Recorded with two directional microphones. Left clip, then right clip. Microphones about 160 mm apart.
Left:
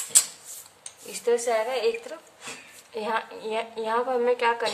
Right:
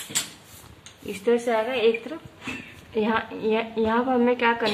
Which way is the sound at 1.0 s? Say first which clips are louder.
Right 2 dB; 15° left (ahead or behind).